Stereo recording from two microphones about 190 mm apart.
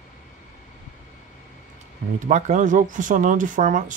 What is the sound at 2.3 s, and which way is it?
Speech, 40° right (ahead or behind).